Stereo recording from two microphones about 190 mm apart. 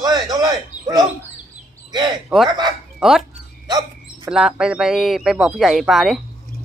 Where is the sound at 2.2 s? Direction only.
Centre (ahead or behind).